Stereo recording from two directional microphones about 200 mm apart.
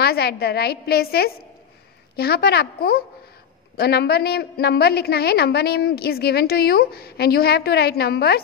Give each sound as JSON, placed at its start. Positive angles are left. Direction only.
{"t": 0.0, "sound": "a woman's voice", "side_deg": 50}